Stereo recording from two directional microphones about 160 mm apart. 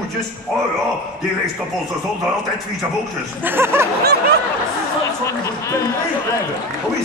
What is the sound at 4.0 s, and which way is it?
Snicker, 90° right.